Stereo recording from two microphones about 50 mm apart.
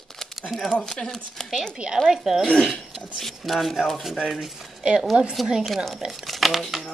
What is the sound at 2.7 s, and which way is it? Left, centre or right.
Speech, centre.